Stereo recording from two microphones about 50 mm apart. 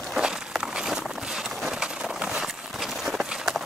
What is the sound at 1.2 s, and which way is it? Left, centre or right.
Clip-clop, centre.